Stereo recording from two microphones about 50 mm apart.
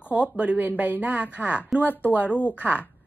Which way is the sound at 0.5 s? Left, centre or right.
Right.